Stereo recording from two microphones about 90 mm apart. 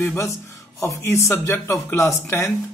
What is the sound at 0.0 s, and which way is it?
Speech, 30° left (ahead or behind).